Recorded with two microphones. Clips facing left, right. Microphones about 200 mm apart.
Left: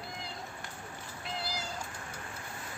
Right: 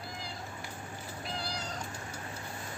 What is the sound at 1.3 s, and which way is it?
Cat, 5° left (ahead or behind).